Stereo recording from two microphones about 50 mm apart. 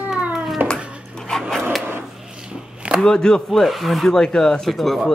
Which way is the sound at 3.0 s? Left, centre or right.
Centre.